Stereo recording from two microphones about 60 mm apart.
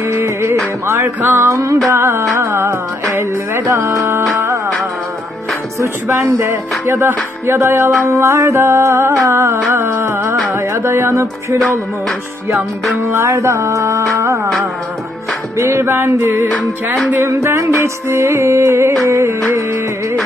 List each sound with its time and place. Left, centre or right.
0.2 s music: right
6.0 s music: right
8.1 s music: right
13.1 s music: right
15.5 s music: right
17.2 s music: right